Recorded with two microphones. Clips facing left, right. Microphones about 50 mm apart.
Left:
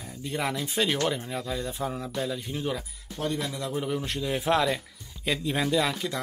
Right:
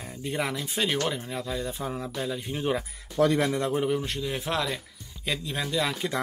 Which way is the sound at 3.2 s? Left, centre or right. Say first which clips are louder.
Right 8 dB; right.